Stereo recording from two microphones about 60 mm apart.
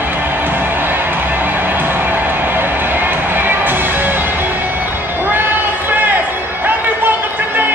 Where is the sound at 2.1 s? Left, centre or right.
Right.